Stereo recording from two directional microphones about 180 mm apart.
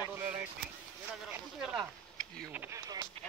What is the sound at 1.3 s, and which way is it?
Speech, 5° right (ahead or behind).